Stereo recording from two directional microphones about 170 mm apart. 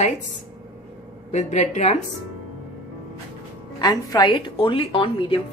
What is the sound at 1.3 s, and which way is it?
Speech, 45° left (ahead or behind).